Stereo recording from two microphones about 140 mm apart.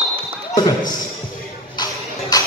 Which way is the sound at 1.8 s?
30° left (ahead or behind).